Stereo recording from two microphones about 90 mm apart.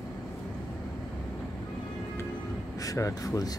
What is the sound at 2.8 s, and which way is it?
Speech, 35° left (ahead or behind).